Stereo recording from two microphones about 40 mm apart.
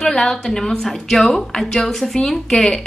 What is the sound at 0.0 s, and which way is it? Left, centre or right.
A woman's voice, centre.